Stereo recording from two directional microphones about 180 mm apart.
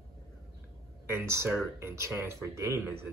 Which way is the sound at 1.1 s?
15° right (ahead or behind).